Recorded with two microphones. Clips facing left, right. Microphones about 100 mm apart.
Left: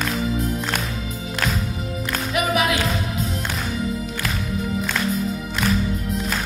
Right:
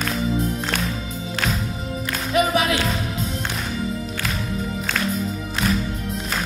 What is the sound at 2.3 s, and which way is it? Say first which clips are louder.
Music: right 2 dB; 30° right (ahead or behind).